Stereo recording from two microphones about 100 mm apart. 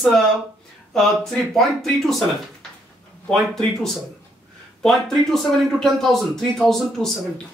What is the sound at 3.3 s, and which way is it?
Speech, 5° left (ahead or behind).